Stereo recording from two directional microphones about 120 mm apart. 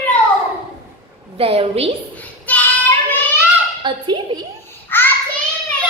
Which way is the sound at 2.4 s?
15° left (ahead or behind).